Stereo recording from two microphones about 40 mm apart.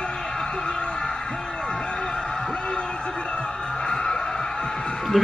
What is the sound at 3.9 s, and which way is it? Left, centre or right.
Music, centre.